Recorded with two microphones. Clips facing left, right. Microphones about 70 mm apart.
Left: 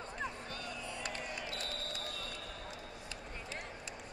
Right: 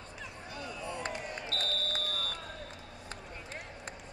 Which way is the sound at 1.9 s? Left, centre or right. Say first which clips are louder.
Right 6 dB; right.